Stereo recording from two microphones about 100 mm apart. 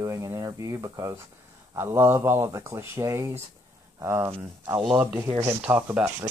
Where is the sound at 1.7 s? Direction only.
25° right (ahead or behind).